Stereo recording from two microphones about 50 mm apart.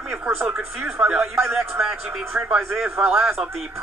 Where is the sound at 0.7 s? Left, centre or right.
Right.